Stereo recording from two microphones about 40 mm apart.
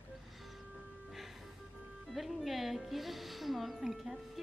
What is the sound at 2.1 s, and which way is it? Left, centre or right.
Speech, centre.